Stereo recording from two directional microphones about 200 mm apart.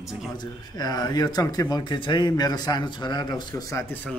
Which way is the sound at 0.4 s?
20° left (ahead or behind).